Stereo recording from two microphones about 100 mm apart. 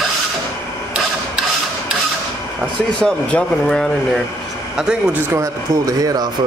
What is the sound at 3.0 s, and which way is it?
Speech, 10° left (ahead or behind).